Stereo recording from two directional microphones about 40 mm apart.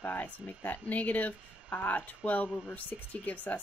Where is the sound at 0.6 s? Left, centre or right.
Left.